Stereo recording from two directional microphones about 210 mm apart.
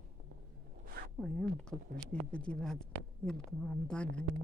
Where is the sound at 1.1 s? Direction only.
Centre (ahead or behind).